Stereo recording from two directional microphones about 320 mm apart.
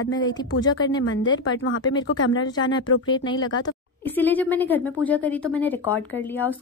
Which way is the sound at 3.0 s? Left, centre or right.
Centre.